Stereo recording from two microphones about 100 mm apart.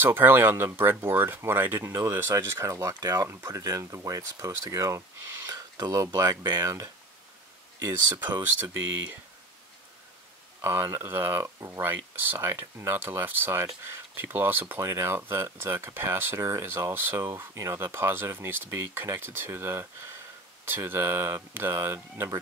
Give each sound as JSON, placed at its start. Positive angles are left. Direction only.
{"t": 0.0, "sound": "speech", "side_deg": -20}
{"t": 8.8, "sound": "speech", "side_deg": -20}
{"t": 10.6, "sound": "speech", "side_deg": -25}